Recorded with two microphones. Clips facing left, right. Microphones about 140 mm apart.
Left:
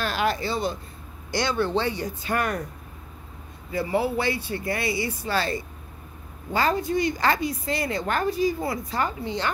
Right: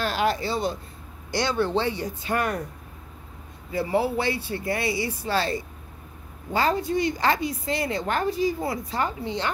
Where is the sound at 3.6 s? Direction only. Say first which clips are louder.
Right 1 dB; 30° right (ahead or behind).